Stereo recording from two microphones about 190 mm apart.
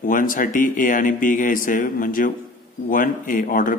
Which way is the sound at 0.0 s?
45° left (ahead or behind).